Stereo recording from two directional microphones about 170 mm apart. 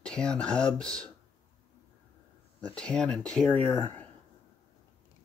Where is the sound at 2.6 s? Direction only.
5° left (ahead or behind).